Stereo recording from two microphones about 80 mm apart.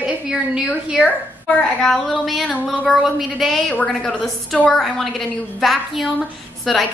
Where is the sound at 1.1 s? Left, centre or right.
Centre.